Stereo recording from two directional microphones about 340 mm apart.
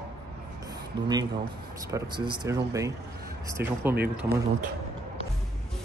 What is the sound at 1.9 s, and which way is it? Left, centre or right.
Speech, centre.